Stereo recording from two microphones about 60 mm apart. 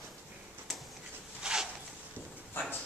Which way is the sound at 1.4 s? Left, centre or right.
Centre.